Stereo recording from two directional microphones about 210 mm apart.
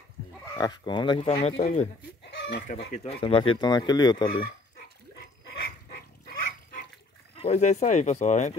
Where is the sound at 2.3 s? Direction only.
55° left (ahead or behind).